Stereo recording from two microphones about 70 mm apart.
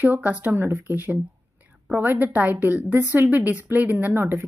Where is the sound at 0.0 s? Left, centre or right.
Right.